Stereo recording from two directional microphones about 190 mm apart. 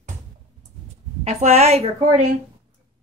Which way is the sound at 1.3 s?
35° right (ahead or behind).